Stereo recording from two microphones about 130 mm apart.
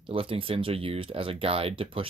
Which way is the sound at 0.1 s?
45° right (ahead or behind).